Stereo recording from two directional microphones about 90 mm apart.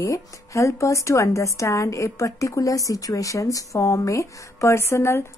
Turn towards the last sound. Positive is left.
turn(degrees=30)  # may be behind; listen again after turning